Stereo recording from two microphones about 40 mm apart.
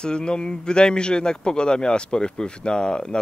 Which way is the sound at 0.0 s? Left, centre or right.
Left.